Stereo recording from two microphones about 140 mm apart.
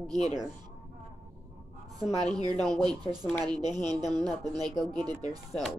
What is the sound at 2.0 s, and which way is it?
Speech, 5° left (ahead or behind).